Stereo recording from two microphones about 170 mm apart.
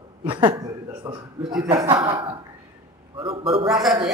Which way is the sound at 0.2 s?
30° right (ahead or behind).